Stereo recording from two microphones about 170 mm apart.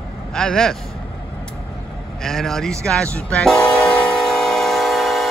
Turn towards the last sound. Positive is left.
turn(degrees=0)  # may be behind; listen again after turning